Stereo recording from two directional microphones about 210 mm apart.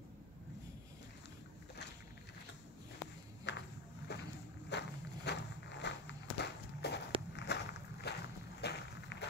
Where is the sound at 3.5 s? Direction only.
55° left (ahead or behind).